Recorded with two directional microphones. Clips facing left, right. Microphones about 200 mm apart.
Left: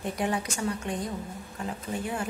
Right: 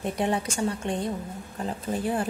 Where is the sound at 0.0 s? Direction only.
25° right (ahead or behind).